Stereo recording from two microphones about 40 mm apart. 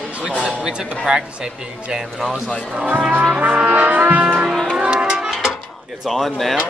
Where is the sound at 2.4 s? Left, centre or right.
Centre.